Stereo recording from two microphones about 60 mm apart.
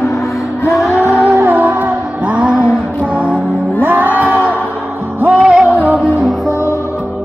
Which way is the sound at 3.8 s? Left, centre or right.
Right.